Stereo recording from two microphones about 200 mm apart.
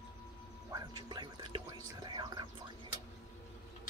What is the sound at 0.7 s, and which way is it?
Whispering, 20° right (ahead or behind).